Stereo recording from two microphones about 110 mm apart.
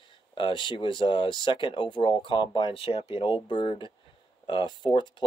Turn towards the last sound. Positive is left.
turn(degrees=45)  # may be behind; listen again after turning